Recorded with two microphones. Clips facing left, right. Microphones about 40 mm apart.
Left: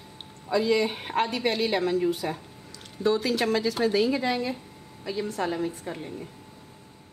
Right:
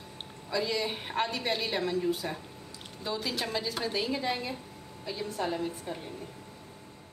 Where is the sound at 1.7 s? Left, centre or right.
Left.